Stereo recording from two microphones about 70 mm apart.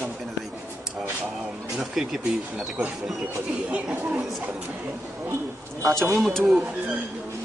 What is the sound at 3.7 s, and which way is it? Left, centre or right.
Speech, centre.